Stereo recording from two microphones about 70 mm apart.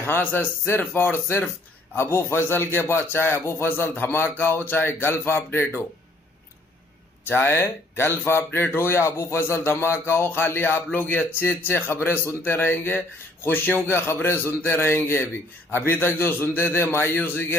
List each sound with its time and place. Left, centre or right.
0.0 s a man's voice: left
7.2 s a man's voice: left